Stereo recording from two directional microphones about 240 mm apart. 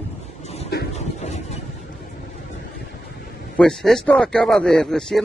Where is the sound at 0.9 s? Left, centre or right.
Left.